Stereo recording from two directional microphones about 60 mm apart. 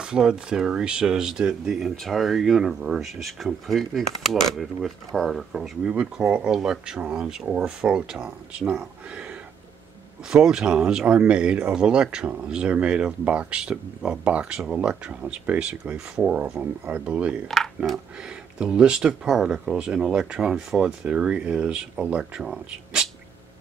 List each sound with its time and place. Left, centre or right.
0.0 s speech: centre
1.7 s speech: centre
3.2 s speech: centre
10.3 s speech: centre
18.6 s speech: centre